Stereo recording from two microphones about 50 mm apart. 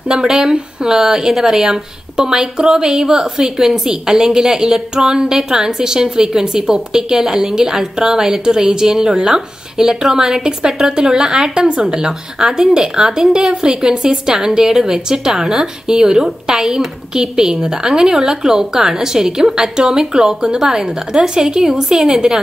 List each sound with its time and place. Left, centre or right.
0.1 s speech: centre